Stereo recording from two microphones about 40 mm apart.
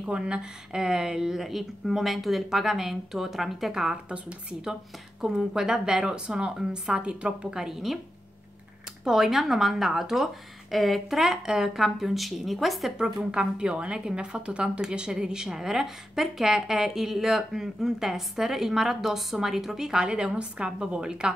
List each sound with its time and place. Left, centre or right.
0.0 s a woman's voice: right; by 3.9 s centre
3.9 s speech: right
5.2 s a woman's voice: centre; by 7.3 s right
7.5 s a woman's voice: centre
9.0 s speech: centre
12.9 s a woman's voice: centre